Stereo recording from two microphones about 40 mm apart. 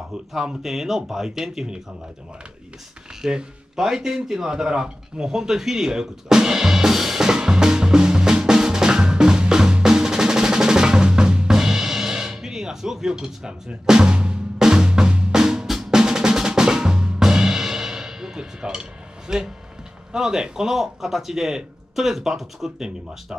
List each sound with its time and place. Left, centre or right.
0.3 s speech: centre
3.2 s speech: centre
3.7 s a sound: centre
14.6 s drum: centre
15.6 s drum: centre
15.9 s drum: centre
20.1 s speech: centre